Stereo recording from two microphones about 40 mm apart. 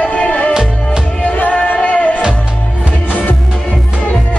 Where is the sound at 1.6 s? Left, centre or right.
Left.